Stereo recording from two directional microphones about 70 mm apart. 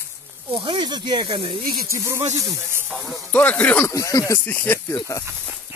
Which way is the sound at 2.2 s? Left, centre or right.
Right.